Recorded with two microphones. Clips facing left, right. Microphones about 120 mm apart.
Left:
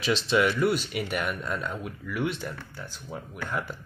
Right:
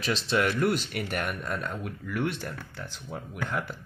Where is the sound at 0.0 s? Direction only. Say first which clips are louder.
Left 3 dB; 40° right (ahead or behind).